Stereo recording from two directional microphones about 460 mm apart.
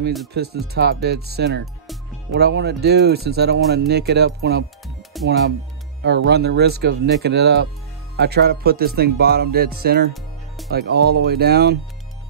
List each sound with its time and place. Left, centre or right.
0.3 s speech: right
5.1 s music: centre
6.0 s speech: right